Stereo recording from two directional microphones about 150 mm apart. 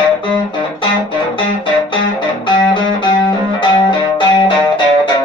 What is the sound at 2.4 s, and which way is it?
Music, 30° left (ahead or behind).